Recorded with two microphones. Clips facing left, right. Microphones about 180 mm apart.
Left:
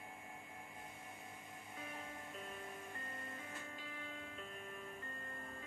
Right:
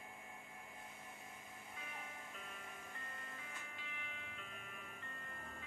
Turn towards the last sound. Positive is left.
turn(degrees=35)  # may be behind; listen again after turning